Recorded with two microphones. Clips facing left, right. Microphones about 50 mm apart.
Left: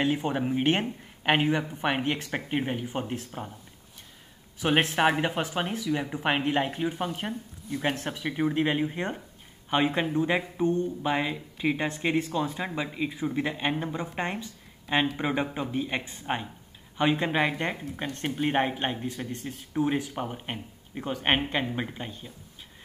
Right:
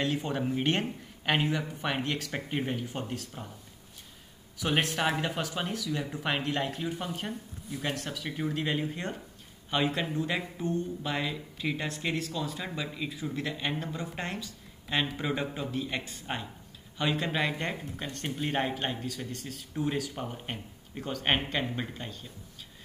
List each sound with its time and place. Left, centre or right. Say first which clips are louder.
0.0 s speech: left 4 dB; centre
4.6 s speech: left 5 dB; left
7.8 s speech: left 5 dB; left